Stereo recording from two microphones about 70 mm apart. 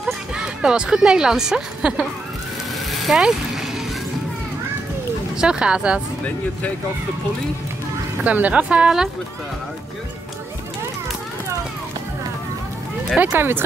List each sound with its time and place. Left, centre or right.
0.0 s speech: centre
2.9 s vehicle: centre
5.4 s speech: centre
8.2 s speech: right
13.2 s speech: right